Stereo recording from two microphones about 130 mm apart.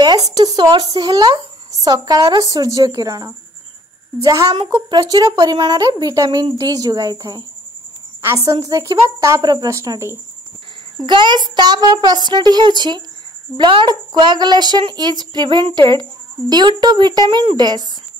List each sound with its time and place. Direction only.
0.0 s speech: 30° right (ahead or behind)
8.5 s speech: 30° right (ahead or behind)
11.1 s speech: 35° right (ahead or behind)